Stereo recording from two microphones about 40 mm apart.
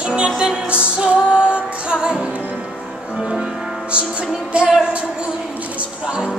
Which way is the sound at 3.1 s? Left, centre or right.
Right.